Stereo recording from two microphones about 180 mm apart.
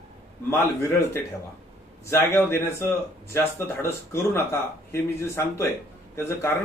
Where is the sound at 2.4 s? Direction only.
15° left (ahead or behind).